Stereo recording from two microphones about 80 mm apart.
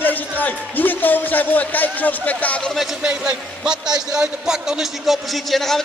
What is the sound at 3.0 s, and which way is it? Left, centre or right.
A man's voice, centre.